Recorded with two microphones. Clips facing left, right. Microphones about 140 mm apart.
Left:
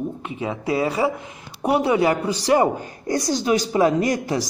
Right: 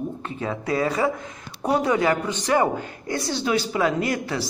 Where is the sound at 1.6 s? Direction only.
25° left (ahead or behind).